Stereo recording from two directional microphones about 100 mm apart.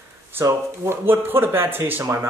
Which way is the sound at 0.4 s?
25° right (ahead or behind).